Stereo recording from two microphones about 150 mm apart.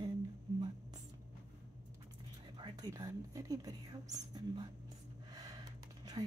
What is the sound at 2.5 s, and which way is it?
Speech, 30° right (ahead or behind).